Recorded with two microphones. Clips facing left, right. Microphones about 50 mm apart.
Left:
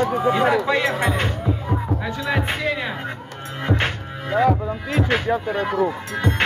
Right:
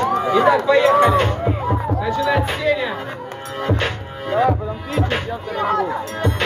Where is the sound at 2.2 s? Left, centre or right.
Left.